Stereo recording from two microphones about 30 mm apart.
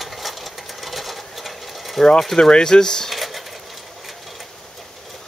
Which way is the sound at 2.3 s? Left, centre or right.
Left.